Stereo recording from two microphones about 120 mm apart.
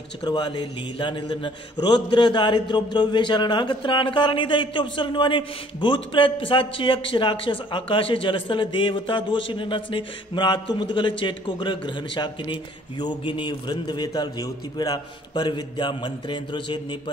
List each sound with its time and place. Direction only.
0.2 s a man's voice: 40° left (ahead or behind)